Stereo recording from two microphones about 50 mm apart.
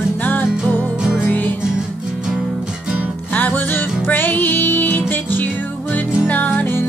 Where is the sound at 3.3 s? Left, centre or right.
Left.